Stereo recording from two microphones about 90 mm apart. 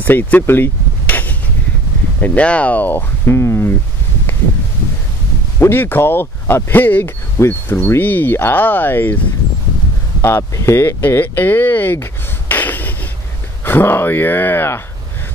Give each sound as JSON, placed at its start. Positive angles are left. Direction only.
{"t": 0.0, "sound": "a sound", "side_deg": 20}
{"t": 2.1, "sound": "speech", "side_deg": 15}
{"t": 5.6, "sound": "speech", "side_deg": 25}
{"t": 10.2, "sound": "speech", "side_deg": 30}